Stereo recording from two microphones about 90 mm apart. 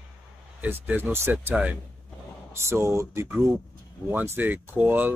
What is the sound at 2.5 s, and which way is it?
Speech, 30° right (ahead or behind).